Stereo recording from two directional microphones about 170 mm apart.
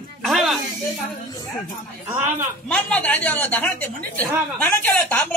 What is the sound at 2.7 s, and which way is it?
Speech, 10° left (ahead or behind).